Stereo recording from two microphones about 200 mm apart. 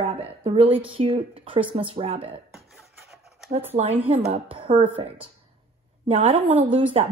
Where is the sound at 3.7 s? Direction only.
30° right (ahead or behind).